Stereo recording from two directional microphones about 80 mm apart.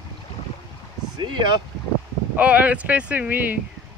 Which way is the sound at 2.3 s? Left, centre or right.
Centre.